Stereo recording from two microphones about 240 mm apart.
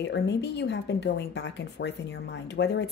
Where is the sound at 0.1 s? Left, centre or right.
Left.